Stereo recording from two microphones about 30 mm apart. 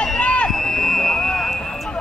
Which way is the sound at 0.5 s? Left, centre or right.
Centre.